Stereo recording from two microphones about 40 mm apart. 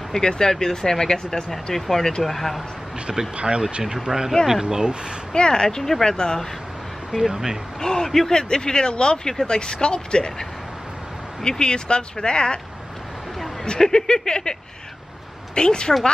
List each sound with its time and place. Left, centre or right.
0.1 s speech: centre
3.1 s speech: right
3.8 s speech: centre
5.3 s speech: centre
7.1 s speech: centre
7.8 s speech: centre
11.4 s speech: centre
13.7 s speech: centre